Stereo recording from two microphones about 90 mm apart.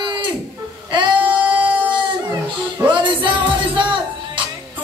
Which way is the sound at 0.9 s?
60° right (ahead or behind).